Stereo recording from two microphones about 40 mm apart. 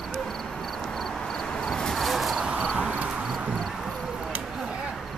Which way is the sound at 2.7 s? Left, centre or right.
Right.